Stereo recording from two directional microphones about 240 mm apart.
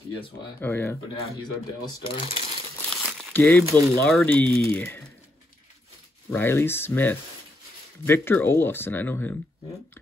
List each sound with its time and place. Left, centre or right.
0.6 s speech: centre
1.9 s speech: left
2.9 s crumpling: centre
3.6 s speech: centre
4.0 s speech: centre
6.3 s speech: centre